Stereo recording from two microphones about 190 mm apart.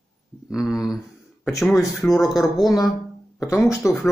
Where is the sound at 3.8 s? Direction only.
15° left (ahead or behind).